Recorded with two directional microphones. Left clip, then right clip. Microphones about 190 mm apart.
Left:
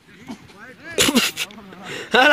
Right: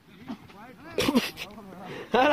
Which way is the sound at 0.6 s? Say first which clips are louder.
Left 8 dB; 50° right (ahead or behind).